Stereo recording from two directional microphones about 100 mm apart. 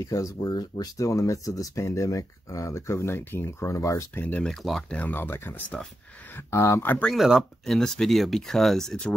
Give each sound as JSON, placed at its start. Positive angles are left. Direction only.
{"t": 0.0, "sound": "speech", "side_deg": 35}
{"t": 4.1, "sound": "speech", "side_deg": 15}
{"t": 4.9, "sound": "speech", "side_deg": 20}
{"t": 6.9, "sound": "speech", "side_deg": 10}
{"t": 7.2, "sound": "speech", "side_deg": -5}
{"t": 7.6, "sound": "speech", "side_deg": 5}